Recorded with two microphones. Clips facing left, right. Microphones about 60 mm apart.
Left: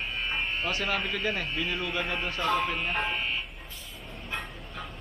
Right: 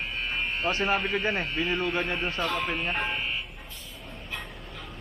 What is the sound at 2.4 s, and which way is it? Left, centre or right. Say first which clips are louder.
Speech: left 4 dB; centre.